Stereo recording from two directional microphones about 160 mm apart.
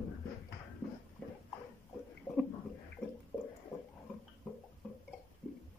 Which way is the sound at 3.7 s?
20° left (ahead or behind).